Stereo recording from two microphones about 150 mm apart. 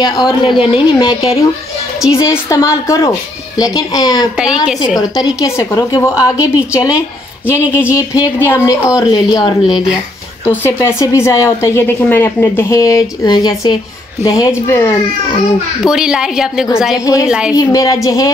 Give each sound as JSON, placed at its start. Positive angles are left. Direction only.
{"t": 0.0, "sound": "a woman's voice", "side_deg": 30}
{"t": 2.0, "sound": "a woman's voice", "side_deg": 20}
{"t": 6.1, "sound": "a woman's voice", "side_deg": -10}
{"t": 6.4, "sound": "a woman's voice", "side_deg": 25}
{"t": 7.9, "sound": "a woman's voice", "side_deg": 20}
{"t": 10.4, "sound": "a woman's voice", "side_deg": 15}
{"t": 15.8, "sound": "a woman's voice", "side_deg": -5}
{"t": 17.0, "sound": "a woman's voice", "side_deg": 20}
{"t": 17.3, "sound": "a woman's voice", "side_deg": -5}
{"t": 17.6, "sound": "a woman's voice", "side_deg": 25}